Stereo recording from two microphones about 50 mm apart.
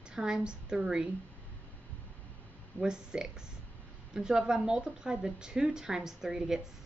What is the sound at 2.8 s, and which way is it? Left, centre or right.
A woman's voice, centre.